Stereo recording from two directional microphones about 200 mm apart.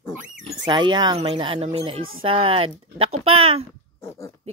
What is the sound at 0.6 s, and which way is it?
Speech, 25° right (ahead or behind).